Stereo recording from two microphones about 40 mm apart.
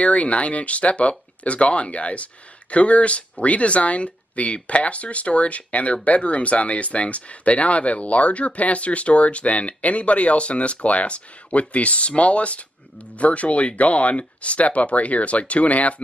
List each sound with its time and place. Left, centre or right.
0.0 s speech: left